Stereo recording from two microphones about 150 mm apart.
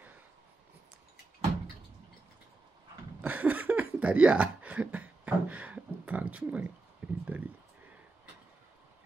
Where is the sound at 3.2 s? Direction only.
10° right (ahead or behind).